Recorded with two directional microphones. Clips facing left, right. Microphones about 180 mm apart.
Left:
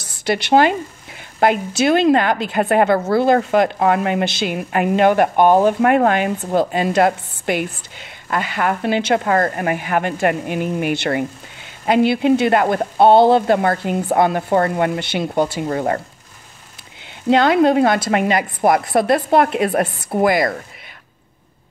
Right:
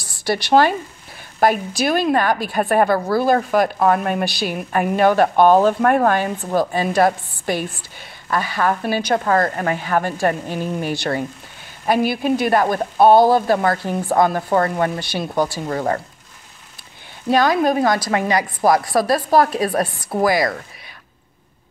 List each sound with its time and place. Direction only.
0.0 s a woman's voice: 20° left (ahead or behind)
17.3 s a woman's voice: 25° left (ahead or behind)